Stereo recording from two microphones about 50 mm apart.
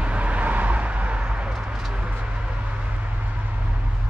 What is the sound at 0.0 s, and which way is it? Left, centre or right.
Vehicle, right.